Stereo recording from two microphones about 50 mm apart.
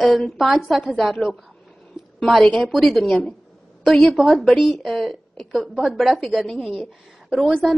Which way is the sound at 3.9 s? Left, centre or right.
Centre.